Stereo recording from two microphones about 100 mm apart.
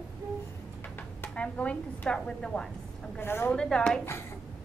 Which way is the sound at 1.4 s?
15° left (ahead or behind).